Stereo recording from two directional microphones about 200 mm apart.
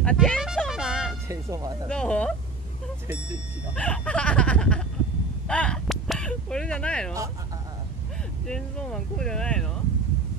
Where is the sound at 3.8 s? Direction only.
5° left (ahead or behind).